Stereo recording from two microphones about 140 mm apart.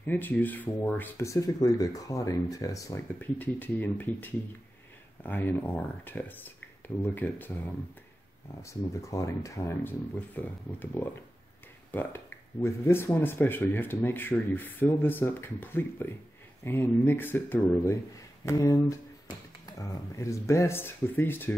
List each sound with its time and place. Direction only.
0.0 s speech: 15° left (ahead or behind)
3.2 s speech: 10° left (ahead or behind)